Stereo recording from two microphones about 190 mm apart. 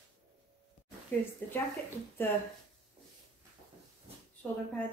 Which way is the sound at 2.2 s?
10° left (ahead or behind).